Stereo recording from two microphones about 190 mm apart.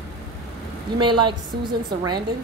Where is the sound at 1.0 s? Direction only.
25° right (ahead or behind).